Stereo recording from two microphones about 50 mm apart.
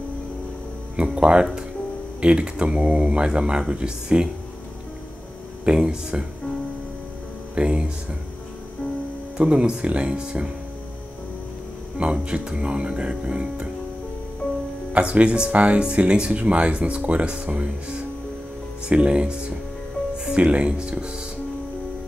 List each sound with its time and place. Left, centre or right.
0.9 s speech: centre
5.7 s speech: centre
7.5 s speech: right
9.4 s speech: centre
12.0 s speech: centre
14.9 s speech: right